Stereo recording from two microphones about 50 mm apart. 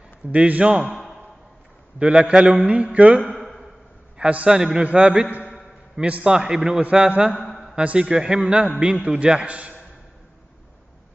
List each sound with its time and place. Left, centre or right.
0.3 s a man's voice: right
2.0 s a man's voice: right
4.2 s a man's voice: right
4.5 s a man's voice: centre
6.8 s a man's voice: right
7.3 s a sound: centre
7.8 s a man's voice: right
8.1 s a man's voice: centre